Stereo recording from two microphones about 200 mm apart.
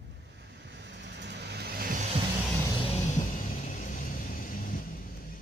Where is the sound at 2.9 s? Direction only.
35° left (ahead or behind).